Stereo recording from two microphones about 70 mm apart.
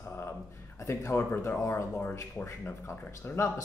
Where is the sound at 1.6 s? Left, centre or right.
Left.